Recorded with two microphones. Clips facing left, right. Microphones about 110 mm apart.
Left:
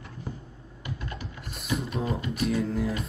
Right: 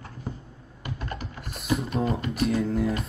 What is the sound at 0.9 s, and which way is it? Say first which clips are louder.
Typing: right 3 dB; 45° right (ahead or behind).